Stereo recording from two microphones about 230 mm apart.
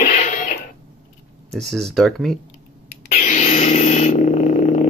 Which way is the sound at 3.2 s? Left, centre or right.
Left.